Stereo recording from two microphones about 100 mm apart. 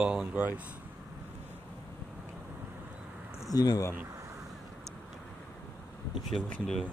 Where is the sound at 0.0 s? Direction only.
10° right (ahead or behind).